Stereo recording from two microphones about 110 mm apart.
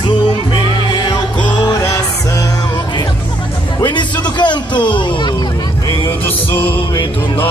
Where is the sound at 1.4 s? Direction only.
40° left (ahead or behind).